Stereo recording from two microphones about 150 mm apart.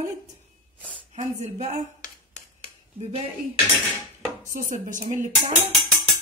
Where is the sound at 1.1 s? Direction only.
50° right (ahead or behind).